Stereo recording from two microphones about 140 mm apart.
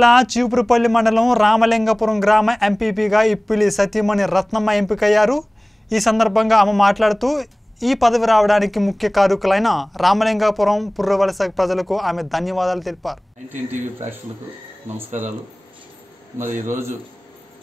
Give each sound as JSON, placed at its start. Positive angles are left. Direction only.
{"t": 0.0, "sound": "a man's voice", "side_deg": 0}
{"t": 16.4, "sound": "a man's voice", "side_deg": -20}